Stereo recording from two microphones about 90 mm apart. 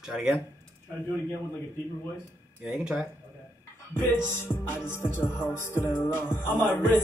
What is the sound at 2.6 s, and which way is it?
Speech, 5° right (ahead or behind).